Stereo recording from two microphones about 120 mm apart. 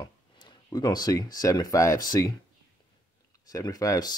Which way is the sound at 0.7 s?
35° left (ahead or behind).